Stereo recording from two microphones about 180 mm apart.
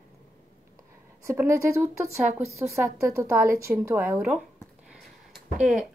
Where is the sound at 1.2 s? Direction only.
15° right (ahead or behind).